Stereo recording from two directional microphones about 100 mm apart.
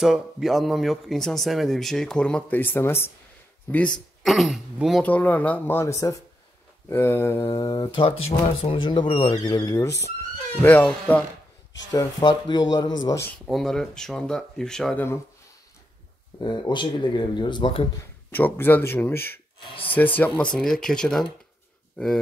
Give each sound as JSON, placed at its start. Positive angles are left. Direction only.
{"t": 0.0, "sound": "speech", "side_deg": -5}
{"t": 3.7, "sound": "speech", "side_deg": 10}
{"t": 4.2, "sound": "speech", "side_deg": 0}
{"t": 5.0, "sound": "speech", "side_deg": 15}
{"t": 7.6, "sound": "speech", "side_deg": 40}
{"t": 8.0, "sound": "speech", "side_deg": 65}
{"t": 9.3, "sound": "speech", "side_deg": 40}
{"t": 10.6, "sound": "speech", "side_deg": 20}
{"t": 12.2, "sound": "speech", "side_deg": 50}
{"t": 13.5, "sound": "speech", "side_deg": 5}
{"t": 16.3, "sound": "speech", "side_deg": 50}
{"t": 18.3, "sound": "speech", "side_deg": 20}